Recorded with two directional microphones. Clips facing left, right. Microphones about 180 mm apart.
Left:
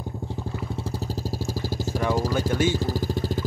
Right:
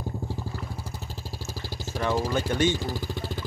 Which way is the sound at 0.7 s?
30° left (ahead or behind).